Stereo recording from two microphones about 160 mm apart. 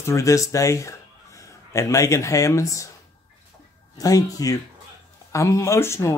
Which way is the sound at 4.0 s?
20° left (ahead or behind).